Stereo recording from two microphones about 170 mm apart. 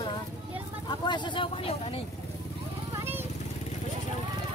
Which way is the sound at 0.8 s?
25° left (ahead or behind).